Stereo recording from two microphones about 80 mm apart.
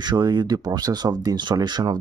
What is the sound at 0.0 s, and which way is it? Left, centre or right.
Speech, right.